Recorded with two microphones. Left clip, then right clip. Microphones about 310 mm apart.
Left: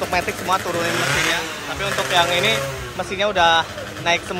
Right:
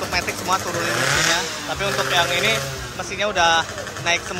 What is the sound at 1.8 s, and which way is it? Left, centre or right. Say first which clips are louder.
Speech: left 1 dB; centre.